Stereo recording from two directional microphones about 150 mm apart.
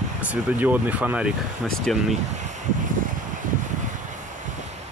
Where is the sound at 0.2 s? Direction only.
10° right (ahead or behind).